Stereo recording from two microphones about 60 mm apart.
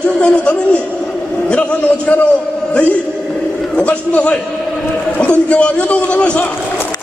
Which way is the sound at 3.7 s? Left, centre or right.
Left.